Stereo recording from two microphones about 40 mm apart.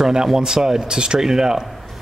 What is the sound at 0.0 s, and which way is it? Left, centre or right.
Speech, centre.